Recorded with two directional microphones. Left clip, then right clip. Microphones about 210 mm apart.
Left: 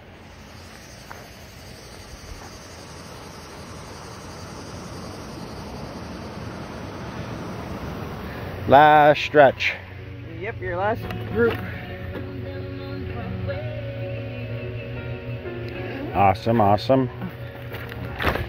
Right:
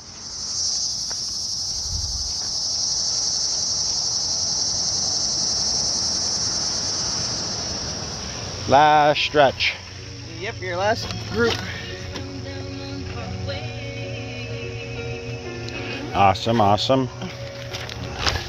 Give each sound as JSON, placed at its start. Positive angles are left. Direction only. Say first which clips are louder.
{"t": 4.6, "sound": "cricket", "louder": "right 14 dB", "side_deg": 45}
{"t": 8.6, "sound": "speech", "louder": "left 2 dB", "side_deg": 10}
{"t": 10.6, "sound": "speech", "louder": "right 3 dB", "side_deg": -10}
{"t": 15.9, "sound": "a man's voice", "louder": "right 1 dB", "side_deg": -5}